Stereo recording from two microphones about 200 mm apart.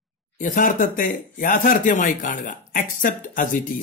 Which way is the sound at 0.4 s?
40° left (ahead or behind).